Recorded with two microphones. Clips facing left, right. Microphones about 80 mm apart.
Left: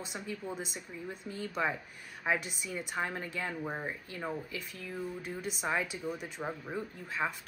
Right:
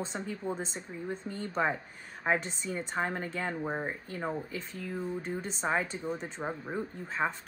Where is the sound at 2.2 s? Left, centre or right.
Centre.